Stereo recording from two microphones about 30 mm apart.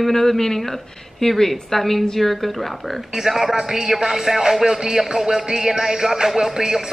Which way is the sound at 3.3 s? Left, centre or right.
Centre.